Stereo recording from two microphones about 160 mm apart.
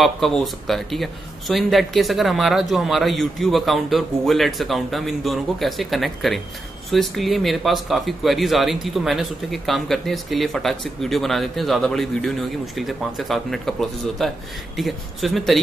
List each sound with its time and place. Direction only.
0.0 s speech: centre (ahead or behind)